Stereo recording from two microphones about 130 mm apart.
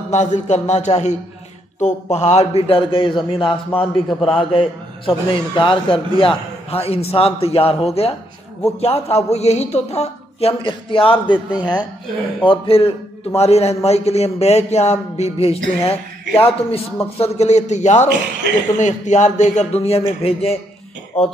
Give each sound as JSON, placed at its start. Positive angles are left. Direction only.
{"t": 0.1, "sound": "a man's voice", "side_deg": 60}
{"t": 10.6, "sound": "a man's voice", "side_deg": 40}
{"t": 12.4, "sound": "a man's voice", "side_deg": 45}